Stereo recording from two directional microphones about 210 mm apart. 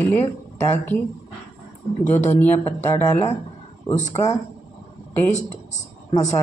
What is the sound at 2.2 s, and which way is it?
Speech, 35° left (ahead or behind).